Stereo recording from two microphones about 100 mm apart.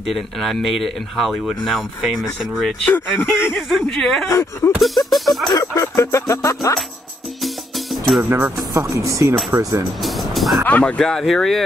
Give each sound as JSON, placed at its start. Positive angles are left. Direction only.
{"t": 0.0, "sound": "speech", "side_deg": 0}
{"t": 4.3, "sound": "speech", "side_deg": 25}
{"t": 4.7, "sound": "speech", "side_deg": 0}
{"t": 5.5, "sound": "music", "side_deg": 35}
{"t": 7.4, "sound": "music", "side_deg": 0}
{"t": 8.2, "sound": "speech", "side_deg": -20}
{"t": 8.7, "sound": "speech", "side_deg": -30}
{"t": 10.0, "sound": "music", "side_deg": 0}
{"t": 10.6, "sound": "speech", "side_deg": 15}